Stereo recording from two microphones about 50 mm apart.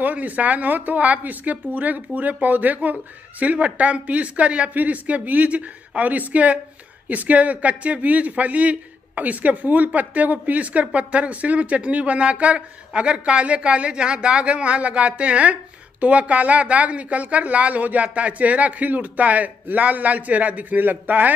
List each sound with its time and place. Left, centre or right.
0.0 s speech: right